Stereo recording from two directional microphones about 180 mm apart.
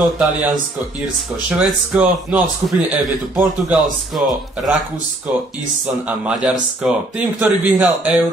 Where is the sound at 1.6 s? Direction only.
10° right (ahead or behind).